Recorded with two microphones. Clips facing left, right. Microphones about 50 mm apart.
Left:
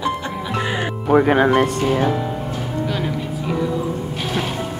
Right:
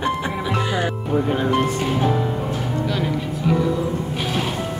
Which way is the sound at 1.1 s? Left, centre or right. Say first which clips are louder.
Left 7 dB; left.